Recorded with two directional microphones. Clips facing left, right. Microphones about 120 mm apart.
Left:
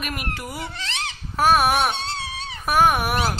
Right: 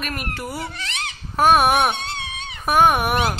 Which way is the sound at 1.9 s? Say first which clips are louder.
Even; 30° left (ahead or behind).